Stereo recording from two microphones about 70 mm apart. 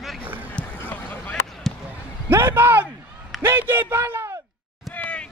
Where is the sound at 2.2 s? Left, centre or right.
Right.